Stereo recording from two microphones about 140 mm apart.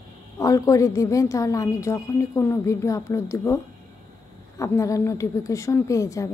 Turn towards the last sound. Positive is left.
turn(degrees=25)  # may be behind; listen again after turning